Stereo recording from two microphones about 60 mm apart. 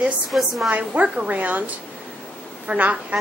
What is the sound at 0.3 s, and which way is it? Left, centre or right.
Speech, centre.